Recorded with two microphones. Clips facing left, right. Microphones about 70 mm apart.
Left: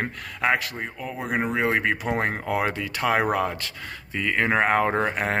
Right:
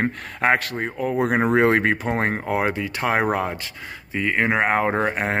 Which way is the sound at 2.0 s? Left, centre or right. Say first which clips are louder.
Right 2 dB; right.